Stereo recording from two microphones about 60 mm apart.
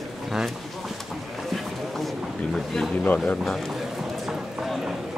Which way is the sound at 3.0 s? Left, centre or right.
Left.